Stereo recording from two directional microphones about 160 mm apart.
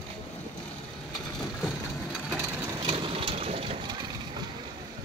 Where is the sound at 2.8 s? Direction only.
35° right (ahead or behind).